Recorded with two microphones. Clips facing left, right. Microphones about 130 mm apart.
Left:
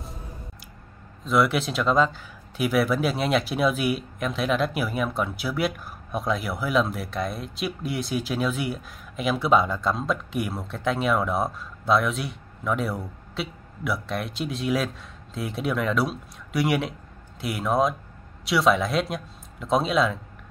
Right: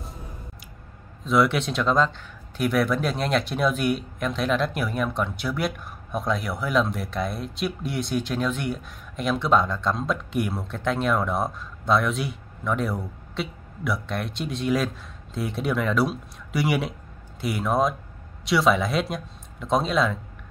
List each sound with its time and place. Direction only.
1.2 s speech: centre (ahead or behind)